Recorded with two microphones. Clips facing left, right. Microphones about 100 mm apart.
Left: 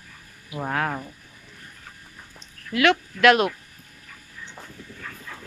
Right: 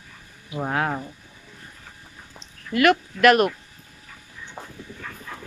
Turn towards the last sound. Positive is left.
turn(degrees=-30)  # may be behind; listen again after turning